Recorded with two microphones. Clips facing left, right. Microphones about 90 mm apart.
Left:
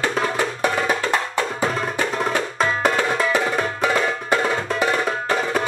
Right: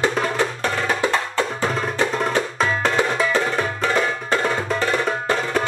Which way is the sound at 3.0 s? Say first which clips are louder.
Right 1 dB; 20° right (ahead or behind).